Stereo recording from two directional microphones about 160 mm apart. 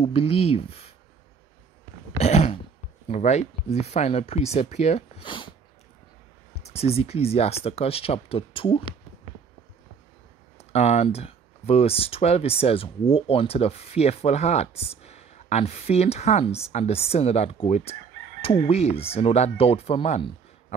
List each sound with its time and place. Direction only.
0.0 s speech: 35° left (ahead or behind)
2.1 s speech: 45° left (ahead or behind)
5.2 s speech: 30° left (ahead or behind)
6.5 s speech: 40° left (ahead or behind)
10.6 s speech: 40° left (ahead or behind)